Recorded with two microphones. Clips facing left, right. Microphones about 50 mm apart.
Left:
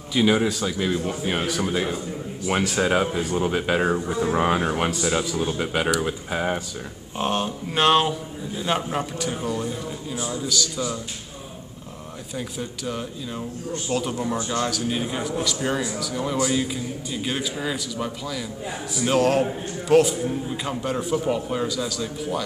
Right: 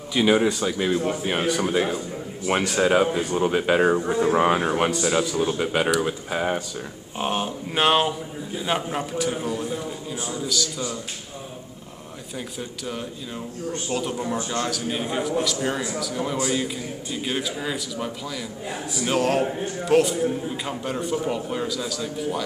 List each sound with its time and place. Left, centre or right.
0.1 s a man's voice: centre
4.0 s speech: centre
4.3 s a man's voice: centre
12.4 s a man's voice: centre